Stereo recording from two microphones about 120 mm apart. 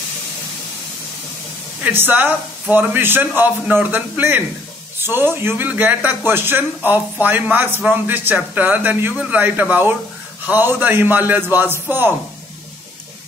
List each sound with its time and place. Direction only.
1.8 s speech: 15° right (ahead or behind)